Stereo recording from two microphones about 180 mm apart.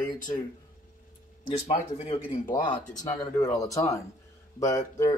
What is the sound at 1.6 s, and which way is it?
Speech, 30° left (ahead or behind).